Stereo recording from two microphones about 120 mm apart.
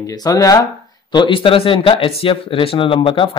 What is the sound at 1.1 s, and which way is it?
Speech, 45° left (ahead or behind).